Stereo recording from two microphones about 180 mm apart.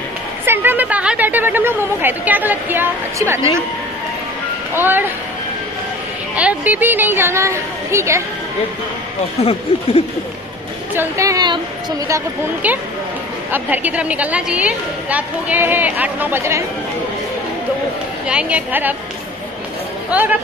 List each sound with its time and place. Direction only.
0.5 s a woman's voice: 10° right (ahead or behind)
4.7 s a woman's voice: 10° right (ahead or behind)
6.3 s a woman's voice: 10° right (ahead or behind)
9.4 s speech: 35° left (ahead or behind)
11.0 s a woman's voice: 15° right (ahead or behind)
12.6 s a woman's voice: 10° right (ahead or behind)
18.2 s a woman's voice: 5° right (ahead or behind)
20.1 s speech: 10° right (ahead or behind)